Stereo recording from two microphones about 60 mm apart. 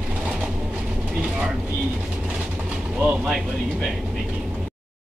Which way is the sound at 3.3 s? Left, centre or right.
Centre.